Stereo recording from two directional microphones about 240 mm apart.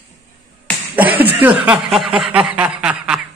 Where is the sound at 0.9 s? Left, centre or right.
Centre.